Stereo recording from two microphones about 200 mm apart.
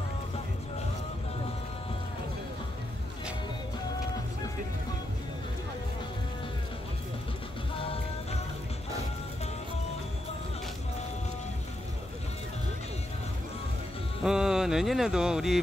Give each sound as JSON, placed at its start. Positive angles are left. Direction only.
{"t": 7.8, "sound": "music", "side_deg": 30}
{"t": 14.2, "sound": "speech", "side_deg": -5}